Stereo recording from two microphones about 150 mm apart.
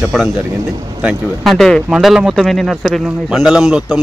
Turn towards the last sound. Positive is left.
turn(degrees=-5)  # may be behind; listen again after turning